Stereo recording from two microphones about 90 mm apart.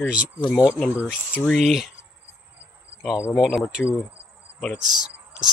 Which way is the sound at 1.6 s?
Centre (ahead or behind).